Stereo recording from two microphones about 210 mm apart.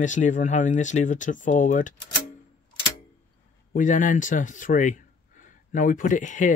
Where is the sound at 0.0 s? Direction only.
35° left (ahead or behind).